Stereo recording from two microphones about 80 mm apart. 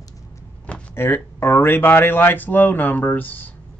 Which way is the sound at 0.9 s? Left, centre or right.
Left.